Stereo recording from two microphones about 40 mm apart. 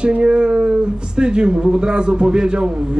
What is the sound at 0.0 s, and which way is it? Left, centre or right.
Speech, right.